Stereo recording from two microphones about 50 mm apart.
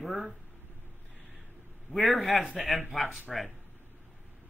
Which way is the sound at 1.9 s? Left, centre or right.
Centre.